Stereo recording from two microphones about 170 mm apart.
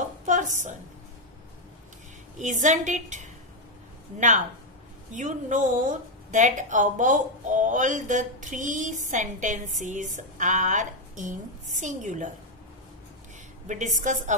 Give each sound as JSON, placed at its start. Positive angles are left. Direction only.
{"t": 0.2, "sound": "a sound", "side_deg": -45}
{"t": 2.3, "sound": "a woman's voice", "side_deg": -45}
{"t": 5.1, "sound": "a woman's voice", "side_deg": -45}
{"t": 13.7, "sound": "a woman's voice", "side_deg": -45}